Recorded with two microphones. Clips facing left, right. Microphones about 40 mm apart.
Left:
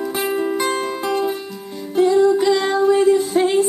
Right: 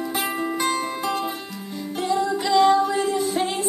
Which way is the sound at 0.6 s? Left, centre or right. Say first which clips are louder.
Left 3 dB; left.